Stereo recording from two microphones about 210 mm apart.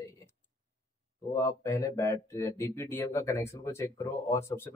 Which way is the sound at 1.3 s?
15° left (ahead or behind).